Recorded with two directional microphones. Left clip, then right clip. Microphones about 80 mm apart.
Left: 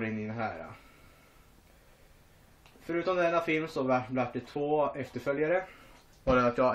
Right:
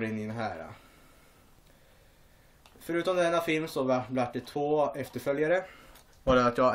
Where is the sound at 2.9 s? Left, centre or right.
Centre.